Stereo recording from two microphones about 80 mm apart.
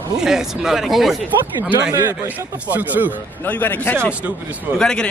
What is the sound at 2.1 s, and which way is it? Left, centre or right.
Speech, right.